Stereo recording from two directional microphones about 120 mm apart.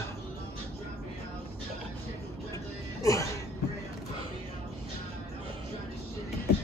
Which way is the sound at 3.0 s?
25° left (ahead or behind).